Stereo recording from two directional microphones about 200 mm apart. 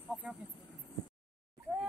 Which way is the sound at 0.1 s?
Centre (ahead or behind).